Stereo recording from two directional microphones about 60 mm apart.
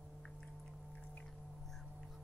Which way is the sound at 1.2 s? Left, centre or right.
Centre.